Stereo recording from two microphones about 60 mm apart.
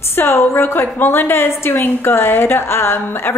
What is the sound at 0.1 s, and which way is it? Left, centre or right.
A woman's voice, left.